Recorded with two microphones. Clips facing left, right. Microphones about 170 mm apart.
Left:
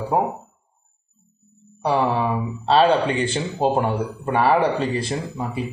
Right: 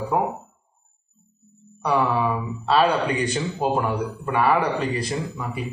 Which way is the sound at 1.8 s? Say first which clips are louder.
Left 1 dB; 30° left (ahead or behind).